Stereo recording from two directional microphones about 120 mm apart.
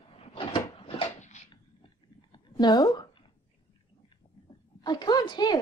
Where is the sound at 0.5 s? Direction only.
50° left (ahead or behind).